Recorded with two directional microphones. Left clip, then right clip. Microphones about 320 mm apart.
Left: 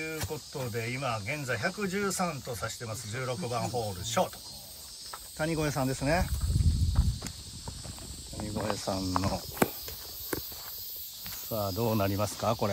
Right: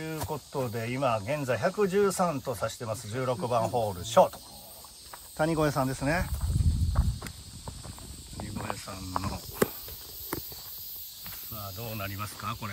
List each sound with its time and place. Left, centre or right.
0.0 s speech: centre
5.4 s speech: centre
8.4 s speech: centre
11.6 s speech: right
12.0 s speech: centre